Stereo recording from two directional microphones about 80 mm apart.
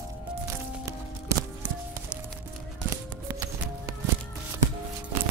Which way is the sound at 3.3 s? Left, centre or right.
Right.